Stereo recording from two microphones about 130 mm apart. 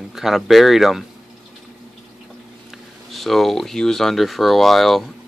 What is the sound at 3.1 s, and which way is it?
Speech, centre (ahead or behind).